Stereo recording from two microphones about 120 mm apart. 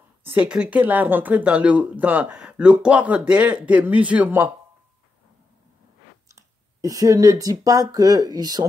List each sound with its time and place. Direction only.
0.2 s speech: 15° right (ahead or behind)
6.3 s speech: 30° right (ahead or behind)